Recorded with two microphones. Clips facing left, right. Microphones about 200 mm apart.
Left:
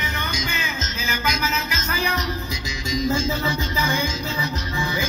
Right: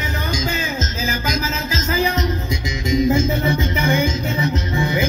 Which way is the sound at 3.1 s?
20° right (ahead or behind).